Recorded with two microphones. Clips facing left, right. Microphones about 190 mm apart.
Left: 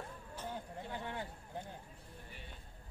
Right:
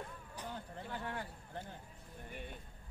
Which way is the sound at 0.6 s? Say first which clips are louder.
Left 1 dB; 20° left (ahead or behind).